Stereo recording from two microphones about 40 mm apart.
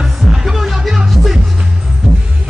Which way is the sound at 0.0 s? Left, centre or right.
Centre.